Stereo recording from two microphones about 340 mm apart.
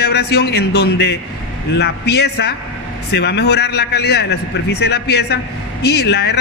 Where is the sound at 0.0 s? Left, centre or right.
Left.